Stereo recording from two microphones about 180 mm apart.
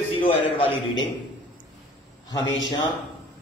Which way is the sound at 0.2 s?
30° left (ahead or behind).